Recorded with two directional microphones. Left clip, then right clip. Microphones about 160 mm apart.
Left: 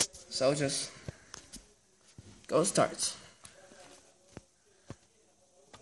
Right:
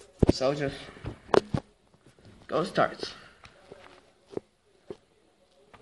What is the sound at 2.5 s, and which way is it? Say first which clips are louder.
Speech: right 2 dB; 60° left (ahead or behind).